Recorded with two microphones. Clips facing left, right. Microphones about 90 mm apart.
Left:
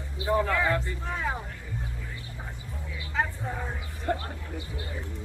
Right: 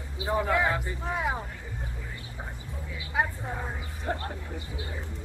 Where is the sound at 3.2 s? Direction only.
10° right (ahead or behind).